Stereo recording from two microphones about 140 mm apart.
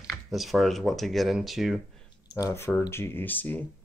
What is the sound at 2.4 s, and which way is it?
Speech, 20° left (ahead or behind).